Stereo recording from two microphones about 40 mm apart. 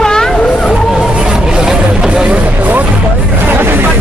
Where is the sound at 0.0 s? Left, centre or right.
Centre.